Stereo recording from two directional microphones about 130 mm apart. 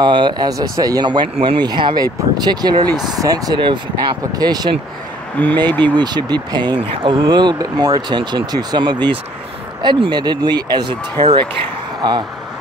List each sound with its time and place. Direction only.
0.0 s speech: 35° right (ahead or behind)
5.4 s speech: 15° left (ahead or behind)
5.9 s speech: 35° right (ahead or behind)
12.0 s speech: 35° right (ahead or behind)